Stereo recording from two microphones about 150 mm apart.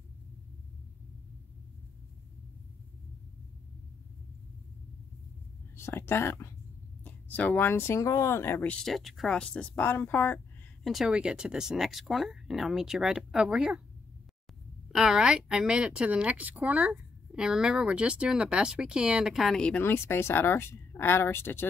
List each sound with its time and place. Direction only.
5.8 s speech: 15° left (ahead or behind)
10.8 s speech: centre (ahead or behind)
15.0 s speech: 5° right (ahead or behind); by 21.6 s 15° left (ahead or behind)